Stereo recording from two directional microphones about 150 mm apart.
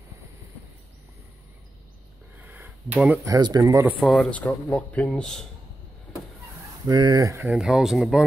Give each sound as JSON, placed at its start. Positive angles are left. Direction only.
{"t": 2.4, "sound": "a sound", "side_deg": -10}
{"t": 3.3, "sound": "speech", "side_deg": -25}
{"t": 4.0, "sound": "speech", "side_deg": 0}
{"t": 6.9, "sound": "speech", "side_deg": -30}
{"t": 7.4, "sound": "speech", "side_deg": -5}